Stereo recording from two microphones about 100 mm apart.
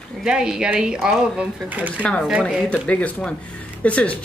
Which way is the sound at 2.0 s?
10° left (ahead or behind).